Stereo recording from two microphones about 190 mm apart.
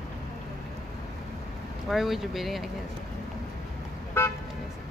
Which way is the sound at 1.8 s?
Centre (ahead or behind).